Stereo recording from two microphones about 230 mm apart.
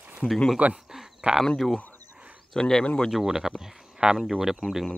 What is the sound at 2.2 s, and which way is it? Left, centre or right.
Speech, centre.